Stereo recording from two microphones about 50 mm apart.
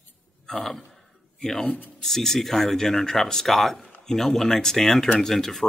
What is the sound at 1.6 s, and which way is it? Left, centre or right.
Speech, left.